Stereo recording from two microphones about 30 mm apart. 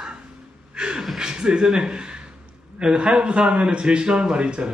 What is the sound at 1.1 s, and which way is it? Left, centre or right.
A man's voice, right.